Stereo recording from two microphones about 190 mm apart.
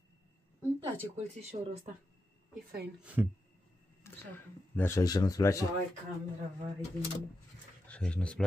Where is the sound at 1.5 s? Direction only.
25° right (ahead or behind).